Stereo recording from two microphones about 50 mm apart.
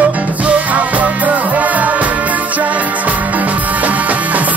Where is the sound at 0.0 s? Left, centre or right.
Right.